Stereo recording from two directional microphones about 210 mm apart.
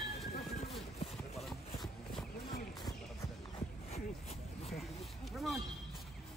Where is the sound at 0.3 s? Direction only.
30° left (ahead or behind).